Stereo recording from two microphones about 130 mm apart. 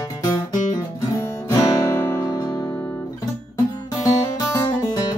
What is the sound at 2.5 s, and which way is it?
Music, 35° left (ahead or behind).